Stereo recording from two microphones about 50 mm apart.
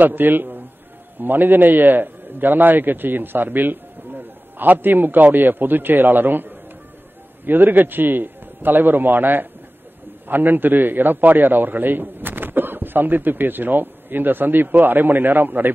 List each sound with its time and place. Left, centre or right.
0.0 s a man's voice: right